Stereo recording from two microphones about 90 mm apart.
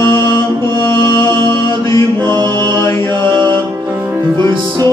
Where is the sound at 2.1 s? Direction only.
60° right (ahead or behind).